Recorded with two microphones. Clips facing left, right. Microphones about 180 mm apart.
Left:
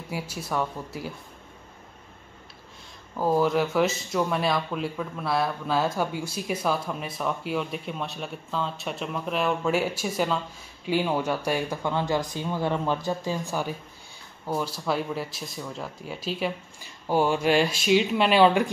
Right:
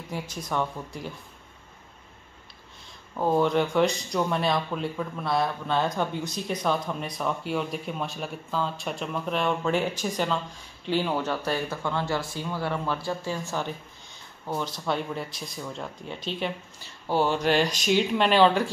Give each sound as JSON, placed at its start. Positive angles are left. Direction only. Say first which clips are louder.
{"t": 0.1, "sound": "speech", "louder": "left 1 dB", "side_deg": 10}
{"t": 3.2, "sound": "speech", "louder": "even", "side_deg": 0}